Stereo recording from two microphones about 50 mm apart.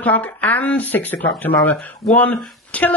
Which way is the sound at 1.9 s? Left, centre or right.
Left.